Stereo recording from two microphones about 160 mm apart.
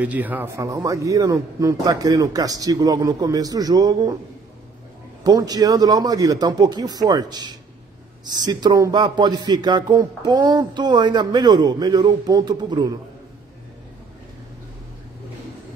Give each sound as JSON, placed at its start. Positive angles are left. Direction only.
{"t": 0.0, "sound": "a man's voice", "side_deg": -10}
{"t": 5.2, "sound": "a man's voice", "side_deg": -25}